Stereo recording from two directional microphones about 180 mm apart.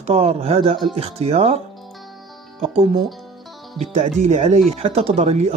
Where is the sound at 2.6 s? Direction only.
30° right (ahead or behind).